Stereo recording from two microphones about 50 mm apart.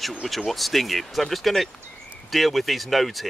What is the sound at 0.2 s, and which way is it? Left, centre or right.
Speech, centre.